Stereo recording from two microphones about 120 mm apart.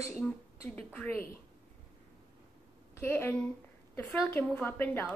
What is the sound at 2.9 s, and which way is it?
Speech, 20° left (ahead or behind).